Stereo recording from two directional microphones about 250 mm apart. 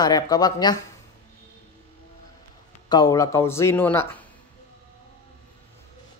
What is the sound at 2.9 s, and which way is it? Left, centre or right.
Speech, centre.